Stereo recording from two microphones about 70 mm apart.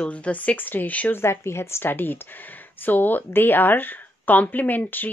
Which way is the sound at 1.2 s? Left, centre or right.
Left.